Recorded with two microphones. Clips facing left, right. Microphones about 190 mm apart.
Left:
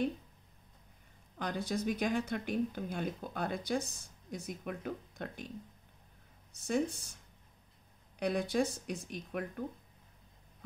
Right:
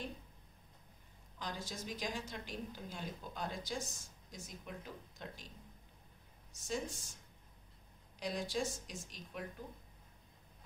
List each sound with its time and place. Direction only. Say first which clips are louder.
1.4 s speech: left 10 dB; 60° left (ahead or behind)
6.5 s speech: left 8 dB; 60° left (ahead or behind)
8.2 s speech: left 7 dB; 60° left (ahead or behind)